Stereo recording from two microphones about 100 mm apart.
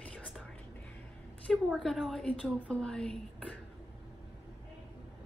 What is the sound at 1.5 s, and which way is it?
A woman's voice, centre (ahead or behind).